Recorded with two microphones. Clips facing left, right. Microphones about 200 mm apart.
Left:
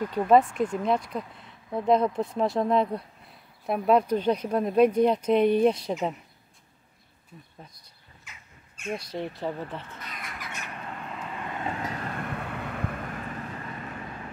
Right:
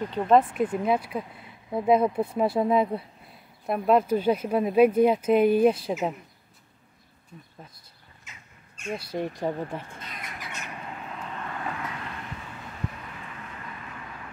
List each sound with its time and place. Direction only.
0.1 s speech: centre (ahead or behind)
8.7 s crow: 5° left (ahead or behind)
9.0 s speech: 10° right (ahead or behind)
11.4 s vehicle: 25° left (ahead or behind)
12.0 s vehicle: 55° left (ahead or behind)